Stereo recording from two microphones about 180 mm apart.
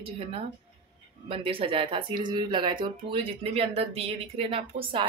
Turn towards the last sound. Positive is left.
turn(degrees=-30)  # may be behind; listen again after turning